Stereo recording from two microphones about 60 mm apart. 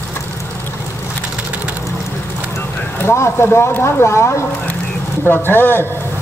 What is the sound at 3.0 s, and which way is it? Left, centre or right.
Speech, left.